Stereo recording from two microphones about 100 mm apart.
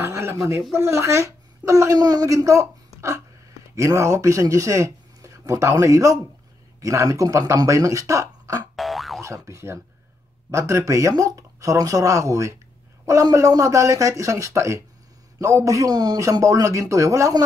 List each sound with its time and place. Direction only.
0.0 s a woman's voice: 25° right (ahead or behind)
8.7 s boing: centre (ahead or behind)
9.2 s speech: 30° right (ahead or behind)